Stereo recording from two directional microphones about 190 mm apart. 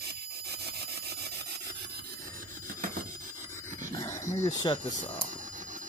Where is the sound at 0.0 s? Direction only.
60° right (ahead or behind).